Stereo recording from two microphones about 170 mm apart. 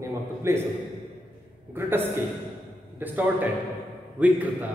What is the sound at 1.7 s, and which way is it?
A man's voice, 15° right (ahead or behind).